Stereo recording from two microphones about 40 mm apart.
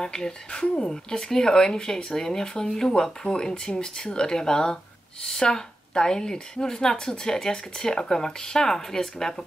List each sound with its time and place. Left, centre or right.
0.0 s speech: centre